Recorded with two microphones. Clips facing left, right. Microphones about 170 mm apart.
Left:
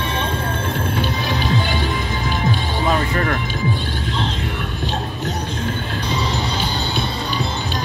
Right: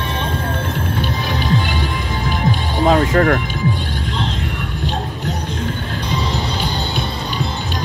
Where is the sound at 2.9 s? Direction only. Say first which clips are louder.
Right 7 dB; 70° right (ahead or behind).